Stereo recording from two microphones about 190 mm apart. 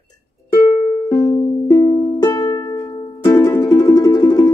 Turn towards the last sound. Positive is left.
turn(degrees=20)  # may be behind; listen again after turning